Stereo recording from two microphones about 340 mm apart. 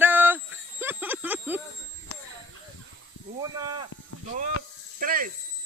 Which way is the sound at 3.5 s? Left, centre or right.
Centre.